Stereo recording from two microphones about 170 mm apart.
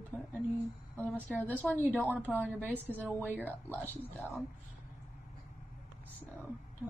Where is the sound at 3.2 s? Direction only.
10° right (ahead or behind).